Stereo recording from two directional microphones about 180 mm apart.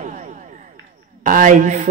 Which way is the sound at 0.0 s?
45° right (ahead or behind).